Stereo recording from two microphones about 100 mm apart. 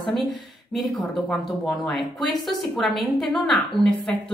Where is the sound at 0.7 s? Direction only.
Centre (ahead or behind).